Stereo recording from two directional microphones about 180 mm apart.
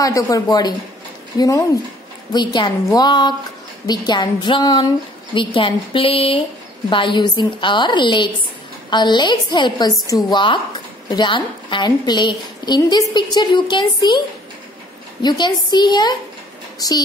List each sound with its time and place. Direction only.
0.0 s speech: 20° left (ahead or behind)
15.2 s speech: 25° left (ahead or behind)